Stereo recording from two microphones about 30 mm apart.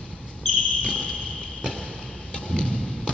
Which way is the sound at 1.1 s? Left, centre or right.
Left.